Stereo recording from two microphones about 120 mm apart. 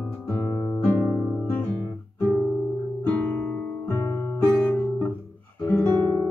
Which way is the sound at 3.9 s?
25° left (ahead or behind).